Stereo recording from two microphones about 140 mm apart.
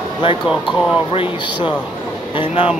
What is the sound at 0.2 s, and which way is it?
Speech, 35° left (ahead or behind).